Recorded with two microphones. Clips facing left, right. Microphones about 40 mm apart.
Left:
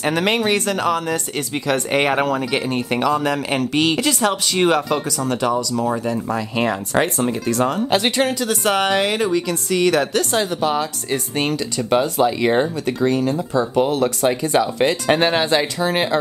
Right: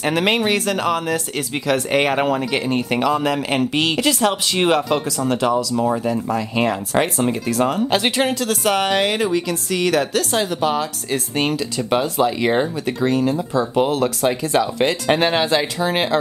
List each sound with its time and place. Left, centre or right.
0.0 s speech: centre